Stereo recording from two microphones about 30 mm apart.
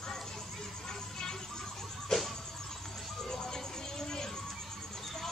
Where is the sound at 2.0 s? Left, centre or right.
Centre.